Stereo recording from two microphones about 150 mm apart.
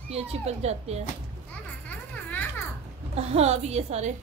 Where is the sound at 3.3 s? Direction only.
45° right (ahead or behind).